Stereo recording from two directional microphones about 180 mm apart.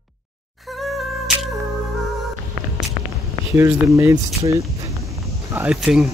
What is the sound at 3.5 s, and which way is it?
Speech, 15° right (ahead or behind).